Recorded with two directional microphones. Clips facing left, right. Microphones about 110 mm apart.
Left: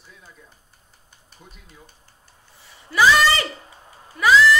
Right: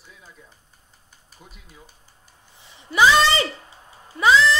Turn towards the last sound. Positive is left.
turn(degrees=-25)  # may be behind; listen again after turning